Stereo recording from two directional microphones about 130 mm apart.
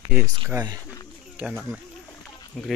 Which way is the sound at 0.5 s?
25° right (ahead or behind).